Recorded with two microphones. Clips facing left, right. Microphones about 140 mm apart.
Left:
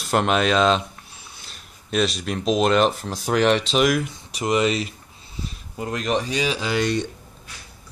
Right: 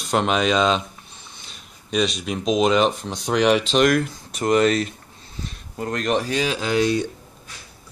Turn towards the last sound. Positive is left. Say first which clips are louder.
# right 2 dB
turn(degrees=-5)  # may be behind; listen again after turning